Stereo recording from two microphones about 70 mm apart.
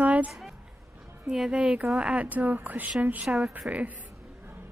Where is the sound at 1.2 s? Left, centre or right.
Centre.